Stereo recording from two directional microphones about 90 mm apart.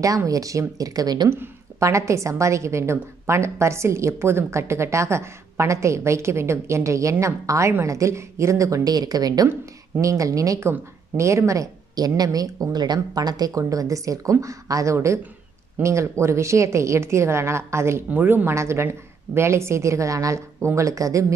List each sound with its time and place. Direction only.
0.0 s a woman's voice: 40° right (ahead or behind)
1.3 s a woman's voice: 30° right (ahead or behind)